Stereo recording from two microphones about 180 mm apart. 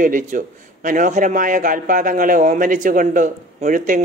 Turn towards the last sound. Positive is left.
turn(degrees=-45)  # may be behind; listen again after turning